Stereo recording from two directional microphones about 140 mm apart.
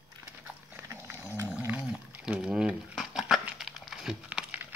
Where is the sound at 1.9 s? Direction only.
5° right (ahead or behind).